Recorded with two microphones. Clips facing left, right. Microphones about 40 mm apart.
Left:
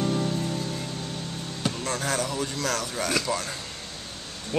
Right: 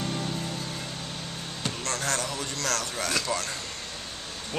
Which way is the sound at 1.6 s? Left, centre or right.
Centre.